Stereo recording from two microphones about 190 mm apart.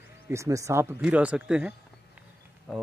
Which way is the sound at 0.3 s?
15° right (ahead or behind).